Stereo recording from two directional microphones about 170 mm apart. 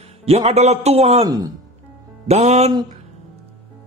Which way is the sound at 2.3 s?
40° right (ahead or behind).